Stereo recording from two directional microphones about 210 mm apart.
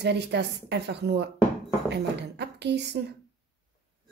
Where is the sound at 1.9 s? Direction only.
55° right (ahead or behind).